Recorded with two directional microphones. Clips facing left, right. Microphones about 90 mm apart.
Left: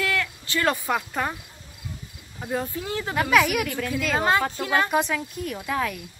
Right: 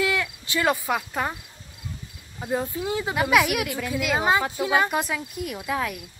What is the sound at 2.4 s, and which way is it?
Speech, 10° right (ahead or behind).